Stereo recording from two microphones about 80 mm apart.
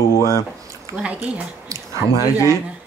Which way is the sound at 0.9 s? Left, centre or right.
Centre.